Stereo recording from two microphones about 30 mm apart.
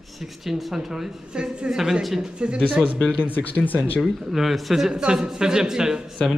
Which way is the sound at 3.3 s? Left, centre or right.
Left.